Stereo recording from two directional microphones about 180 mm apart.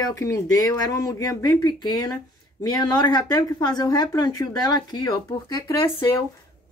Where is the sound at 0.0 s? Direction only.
20° left (ahead or behind).